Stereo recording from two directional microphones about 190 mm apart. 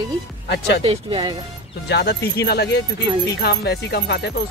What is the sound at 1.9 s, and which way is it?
Speech, 60° left (ahead or behind).